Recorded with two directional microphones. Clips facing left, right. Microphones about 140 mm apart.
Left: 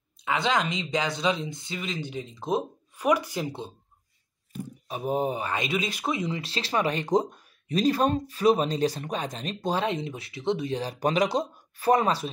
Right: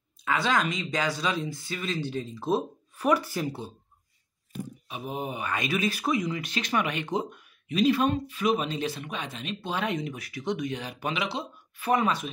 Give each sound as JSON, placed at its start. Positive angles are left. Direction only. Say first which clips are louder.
{"t": 0.2, "sound": "speech", "louder": "even", "side_deg": 20}
{"t": 4.8, "sound": "speech", "louder": "left 8 dB", "side_deg": 40}